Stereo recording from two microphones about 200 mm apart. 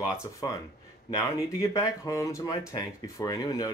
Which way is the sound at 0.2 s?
15° left (ahead or behind).